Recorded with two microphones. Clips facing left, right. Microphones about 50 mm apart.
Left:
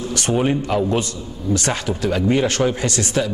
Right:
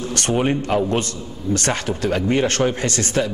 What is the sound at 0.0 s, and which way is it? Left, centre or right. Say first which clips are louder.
A man's voice: left 1 dB; right.